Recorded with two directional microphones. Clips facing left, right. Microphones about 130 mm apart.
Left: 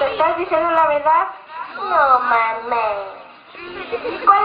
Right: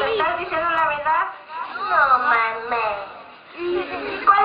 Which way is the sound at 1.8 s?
25° left (ahead or behind).